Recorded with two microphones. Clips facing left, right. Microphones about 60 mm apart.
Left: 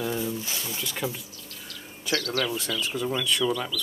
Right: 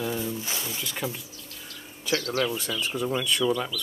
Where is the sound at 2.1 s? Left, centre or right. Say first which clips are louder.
Right 1 dB; right.